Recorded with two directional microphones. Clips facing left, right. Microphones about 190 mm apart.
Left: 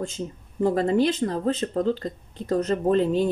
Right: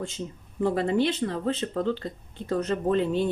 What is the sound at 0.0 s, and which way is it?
Speech, 40° left (ahead or behind).